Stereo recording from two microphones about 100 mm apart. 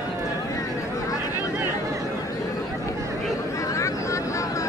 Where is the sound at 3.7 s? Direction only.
30° left (ahead or behind).